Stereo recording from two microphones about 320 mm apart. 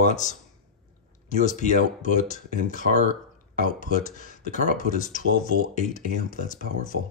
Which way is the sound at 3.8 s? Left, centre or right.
Left.